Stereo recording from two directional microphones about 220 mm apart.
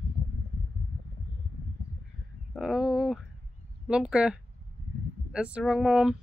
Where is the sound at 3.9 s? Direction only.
5° right (ahead or behind).